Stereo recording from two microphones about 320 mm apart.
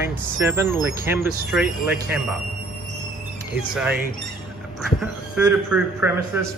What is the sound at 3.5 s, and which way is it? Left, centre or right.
Speech, centre.